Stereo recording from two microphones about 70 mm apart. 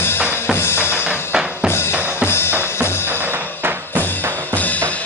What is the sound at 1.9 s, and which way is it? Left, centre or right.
Drum, right.